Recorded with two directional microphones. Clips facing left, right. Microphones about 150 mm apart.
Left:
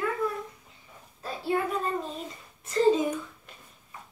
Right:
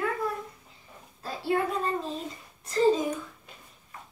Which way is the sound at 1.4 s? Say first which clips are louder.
Right 1 dB; centre (ahead or behind).